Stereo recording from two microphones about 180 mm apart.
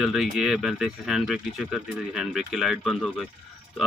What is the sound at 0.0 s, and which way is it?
Speech, centre (ahead or behind).